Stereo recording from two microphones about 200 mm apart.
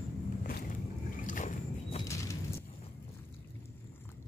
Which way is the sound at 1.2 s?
40° left (ahead or behind).